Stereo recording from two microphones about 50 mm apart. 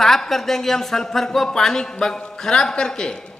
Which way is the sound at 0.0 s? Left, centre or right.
Centre.